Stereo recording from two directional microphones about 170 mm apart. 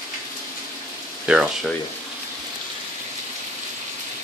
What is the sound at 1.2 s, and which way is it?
Speech, 5° right (ahead or behind).